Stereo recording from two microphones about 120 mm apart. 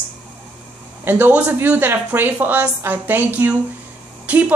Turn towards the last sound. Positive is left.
turn(degrees=-10)  # may be behind; listen again after turning